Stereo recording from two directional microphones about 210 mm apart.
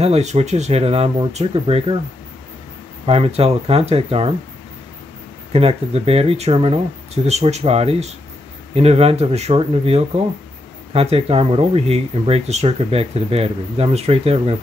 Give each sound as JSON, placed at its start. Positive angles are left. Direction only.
{"t": 0.0, "sound": "speech", "side_deg": -30}
{"t": 3.1, "sound": "speech", "side_deg": -30}
{"t": 5.5, "sound": "speech", "side_deg": -30}